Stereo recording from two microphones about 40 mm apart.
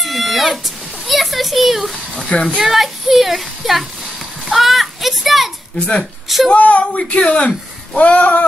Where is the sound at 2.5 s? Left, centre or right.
Centre.